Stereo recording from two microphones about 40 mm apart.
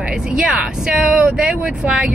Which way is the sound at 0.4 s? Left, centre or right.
Centre.